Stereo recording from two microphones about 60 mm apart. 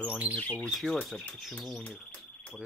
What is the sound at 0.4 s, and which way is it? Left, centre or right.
Speech, centre.